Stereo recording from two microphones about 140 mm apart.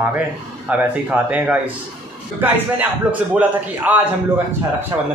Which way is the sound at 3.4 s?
10° right (ahead or behind).